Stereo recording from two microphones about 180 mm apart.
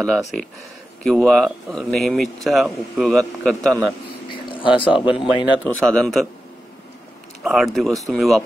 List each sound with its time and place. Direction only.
0.0 s speech: centre (ahead or behind)
4.3 s a sound: 30° left (ahead or behind)
4.9 s speech: 5° right (ahead or behind)
5.6 s speech: 5° left (ahead or behind)
7.4 s speech: centre (ahead or behind)